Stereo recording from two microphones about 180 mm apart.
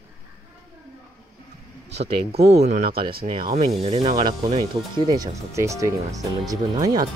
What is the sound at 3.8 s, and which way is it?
Speech, 30° right (ahead or behind).